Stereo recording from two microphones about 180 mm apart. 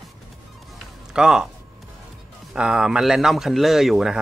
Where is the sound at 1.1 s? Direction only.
5° right (ahead or behind).